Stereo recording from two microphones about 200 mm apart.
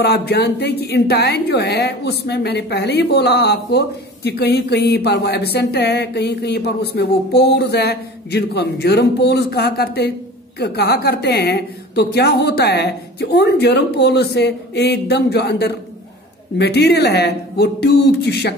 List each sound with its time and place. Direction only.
0.0 s a woman's voice: 55° left (ahead or behind)